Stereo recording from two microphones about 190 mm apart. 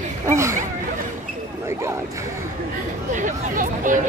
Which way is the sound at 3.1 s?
40° right (ahead or behind).